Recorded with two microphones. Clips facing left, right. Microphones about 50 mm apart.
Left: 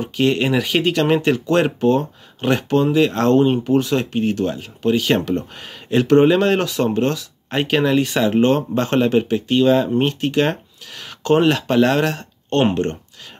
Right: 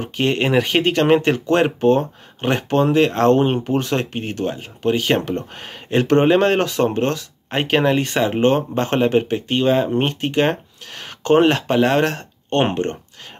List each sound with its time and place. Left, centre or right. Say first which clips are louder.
0.0 s speech: left 1 dB; right